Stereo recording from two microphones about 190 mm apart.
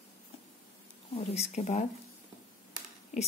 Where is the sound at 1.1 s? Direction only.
30° left (ahead or behind).